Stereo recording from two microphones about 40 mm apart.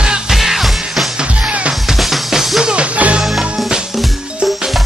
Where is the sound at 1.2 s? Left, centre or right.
Right.